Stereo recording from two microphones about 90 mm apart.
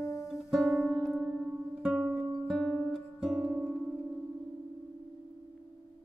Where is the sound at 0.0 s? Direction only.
35° left (ahead or behind).